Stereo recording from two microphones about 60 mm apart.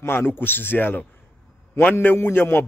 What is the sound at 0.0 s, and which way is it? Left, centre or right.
A man's voice, left.